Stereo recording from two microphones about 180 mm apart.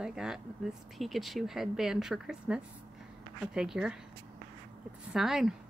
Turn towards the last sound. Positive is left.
turn(degrees=0)  # may be behind; listen again after turning